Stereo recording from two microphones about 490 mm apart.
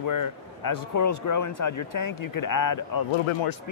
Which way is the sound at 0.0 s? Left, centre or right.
Left.